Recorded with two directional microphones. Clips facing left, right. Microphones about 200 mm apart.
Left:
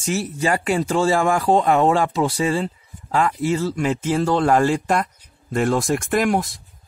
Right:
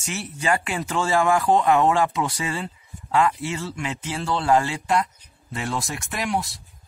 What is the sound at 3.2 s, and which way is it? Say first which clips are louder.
Speech: left 4 dB; 40° left (ahead or behind).